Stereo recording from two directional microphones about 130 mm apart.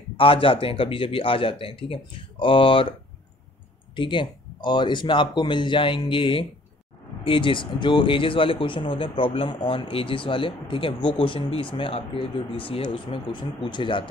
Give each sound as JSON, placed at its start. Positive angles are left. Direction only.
{"t": 0.2, "sound": "a man's voice", "side_deg": 45}
{"t": 3.9, "sound": "speech", "side_deg": 40}